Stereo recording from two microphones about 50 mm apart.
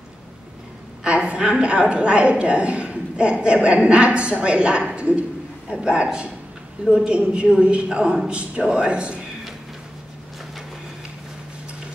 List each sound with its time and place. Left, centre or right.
1.0 s a woman's voice: right